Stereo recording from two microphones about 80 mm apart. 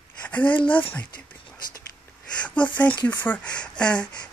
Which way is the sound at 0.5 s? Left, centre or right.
Left.